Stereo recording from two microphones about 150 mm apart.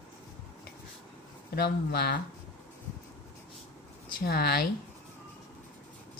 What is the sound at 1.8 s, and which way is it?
Speech, 90° left.